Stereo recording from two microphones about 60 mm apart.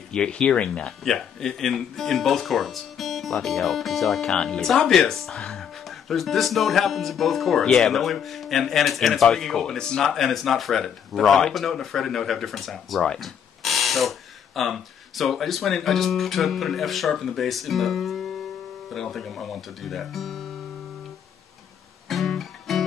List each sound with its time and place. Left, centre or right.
0.1 s speech: centre
1.0 s speech: centre
22.1 s music: centre